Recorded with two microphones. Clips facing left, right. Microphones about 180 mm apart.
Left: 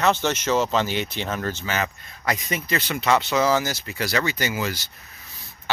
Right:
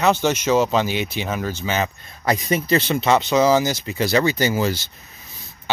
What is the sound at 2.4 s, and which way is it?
Speech, 30° right (ahead or behind).